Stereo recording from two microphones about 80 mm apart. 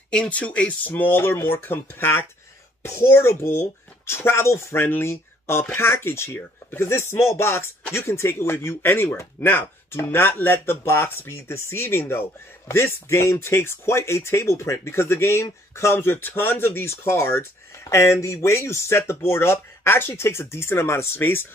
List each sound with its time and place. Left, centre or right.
0.1 s speech: centre; by 21.5 s left